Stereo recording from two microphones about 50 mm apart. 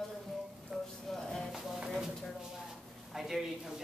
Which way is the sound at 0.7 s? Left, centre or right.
Centre.